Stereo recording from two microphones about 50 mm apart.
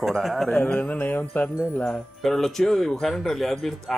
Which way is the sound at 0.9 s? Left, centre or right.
Left.